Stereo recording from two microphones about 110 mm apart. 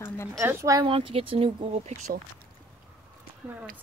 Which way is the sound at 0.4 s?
25° right (ahead or behind).